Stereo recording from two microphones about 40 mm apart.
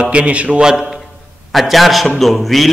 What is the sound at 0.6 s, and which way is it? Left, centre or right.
Speech, centre.